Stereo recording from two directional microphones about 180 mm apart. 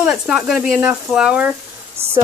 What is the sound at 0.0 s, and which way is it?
Speech, 5° right (ahead or behind).